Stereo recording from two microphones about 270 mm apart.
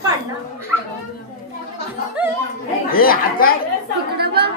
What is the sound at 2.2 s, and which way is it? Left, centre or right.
Speech, centre.